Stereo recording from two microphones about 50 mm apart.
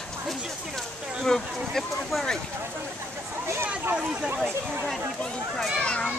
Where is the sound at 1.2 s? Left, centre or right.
Centre.